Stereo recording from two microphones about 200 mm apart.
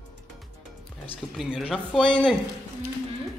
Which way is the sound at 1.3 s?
Centre (ahead or behind).